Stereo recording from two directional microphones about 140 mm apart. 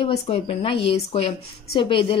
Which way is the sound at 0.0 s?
40° left (ahead or behind).